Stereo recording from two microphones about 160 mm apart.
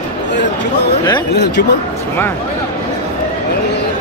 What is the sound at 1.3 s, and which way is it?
Speech, 90° left.